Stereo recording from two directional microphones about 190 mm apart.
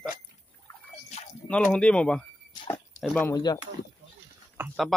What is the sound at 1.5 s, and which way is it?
Speech, 5° left (ahead or behind).